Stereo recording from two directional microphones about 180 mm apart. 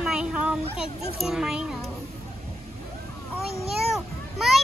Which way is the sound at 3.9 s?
Centre (ahead or behind).